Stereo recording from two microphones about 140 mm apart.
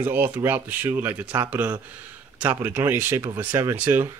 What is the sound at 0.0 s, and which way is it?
Speech, 15° right (ahead or behind).